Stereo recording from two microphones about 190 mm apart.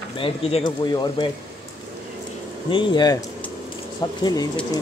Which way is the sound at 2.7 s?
25° left (ahead or behind).